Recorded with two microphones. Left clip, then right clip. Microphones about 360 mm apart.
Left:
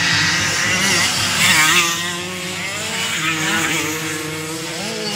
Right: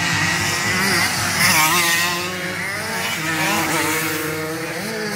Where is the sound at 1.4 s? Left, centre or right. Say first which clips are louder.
Left 2 dB; centre.